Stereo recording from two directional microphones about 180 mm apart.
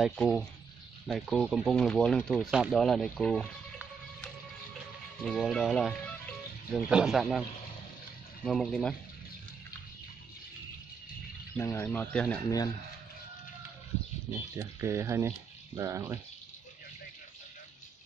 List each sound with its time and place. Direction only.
0.0 s speech: centre (ahead or behind)
5.2 s speech: centre (ahead or behind)
8.5 s speech: 5° left (ahead or behind)
11.5 s speech: 15° left (ahead or behind)
14.6 s speech: 15° right (ahead or behind)